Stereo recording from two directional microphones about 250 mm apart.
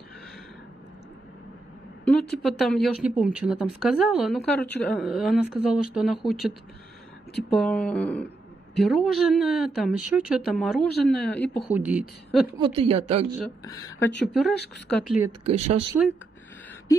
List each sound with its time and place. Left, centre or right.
2.0 s speech: centre
7.4 s speech: centre
12.5 s speech: right
14.2 s speech: centre
15.5 s speech: right